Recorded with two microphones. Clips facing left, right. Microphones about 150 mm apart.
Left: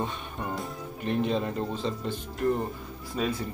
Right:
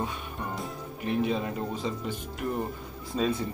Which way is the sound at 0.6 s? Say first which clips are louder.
Left 1 dB; 5° right (ahead or behind).